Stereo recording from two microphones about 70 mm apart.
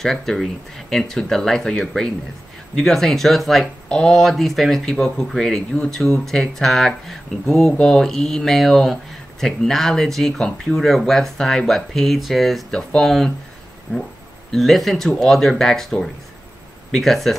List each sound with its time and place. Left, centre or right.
0.0 s speech: centre
13.9 s speech: centre
14.5 s speech: centre